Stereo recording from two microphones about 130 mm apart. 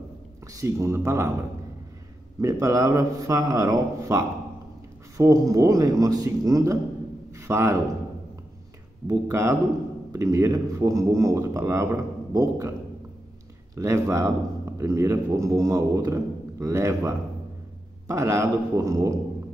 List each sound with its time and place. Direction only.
0.5 s a man's voice: 25° right (ahead or behind)
2.4 s a man's voice: 25° right (ahead or behind)
7.3 s a sound: 20° right (ahead or behind)
9.0 s a man's voice: 25° right (ahead or behind)
13.7 s a man's voice: 25° right (ahead or behind)